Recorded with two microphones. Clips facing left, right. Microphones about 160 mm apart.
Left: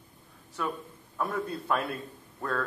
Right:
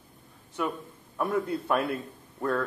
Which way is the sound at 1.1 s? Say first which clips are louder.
Right 4 dB; 20° right (ahead or behind).